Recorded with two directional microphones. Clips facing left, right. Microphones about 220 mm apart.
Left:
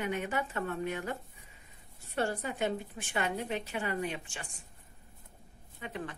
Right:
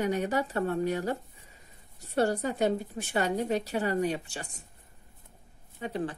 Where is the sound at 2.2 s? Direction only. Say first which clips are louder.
Right 6 dB; 40° right (ahead or behind).